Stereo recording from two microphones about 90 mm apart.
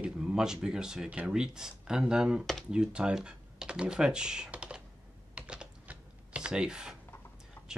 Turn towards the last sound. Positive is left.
turn(degrees=20)  # may be behind; listen again after turning